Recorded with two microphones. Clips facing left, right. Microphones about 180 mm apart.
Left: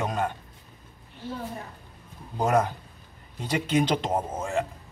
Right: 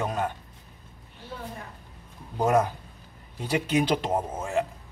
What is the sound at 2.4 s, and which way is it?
A man's voice, 10° right (ahead or behind).